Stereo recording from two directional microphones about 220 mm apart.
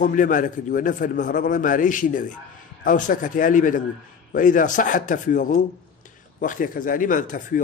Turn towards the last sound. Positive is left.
turn(degrees=35)  # may be behind; listen again after turning